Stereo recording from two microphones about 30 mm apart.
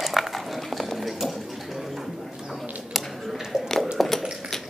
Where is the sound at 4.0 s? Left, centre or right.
Centre.